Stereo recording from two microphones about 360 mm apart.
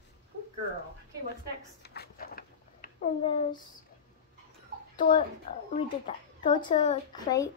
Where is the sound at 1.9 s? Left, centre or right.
Left.